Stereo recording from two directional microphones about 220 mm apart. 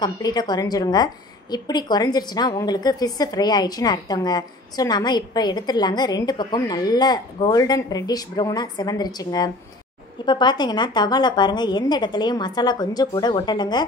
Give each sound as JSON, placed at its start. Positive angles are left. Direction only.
{"t": 0.0, "sound": "a woman's voice", "side_deg": 20}